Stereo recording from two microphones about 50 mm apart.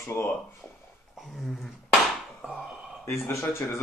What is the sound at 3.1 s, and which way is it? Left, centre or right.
Speech, left.